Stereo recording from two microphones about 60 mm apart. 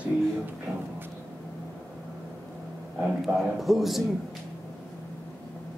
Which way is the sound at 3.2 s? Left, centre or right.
Centre.